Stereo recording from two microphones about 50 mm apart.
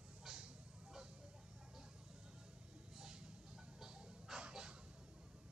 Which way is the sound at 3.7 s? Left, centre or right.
Centre.